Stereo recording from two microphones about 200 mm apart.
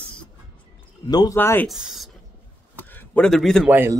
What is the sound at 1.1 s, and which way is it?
Speech, 20° left (ahead or behind).